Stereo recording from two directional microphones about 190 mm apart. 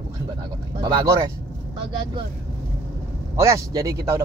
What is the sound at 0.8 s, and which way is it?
Speech, 20° right (ahead or behind).